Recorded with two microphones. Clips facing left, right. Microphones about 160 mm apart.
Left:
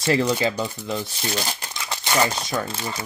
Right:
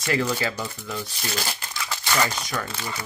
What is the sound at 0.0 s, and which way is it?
Speech, 30° left (ahead or behind).